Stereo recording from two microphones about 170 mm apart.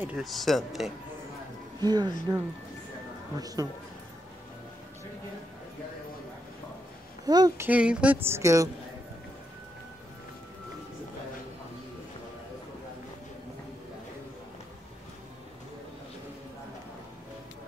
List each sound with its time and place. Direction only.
0.0 s speech: 5° right (ahead or behind)
1.8 s speech: 25° right (ahead or behind)
3.3 s speech: 20° right (ahead or behind)
7.2 s speech: 20° right (ahead or behind)
7.6 s a woman's voice: 5° right (ahead or behind)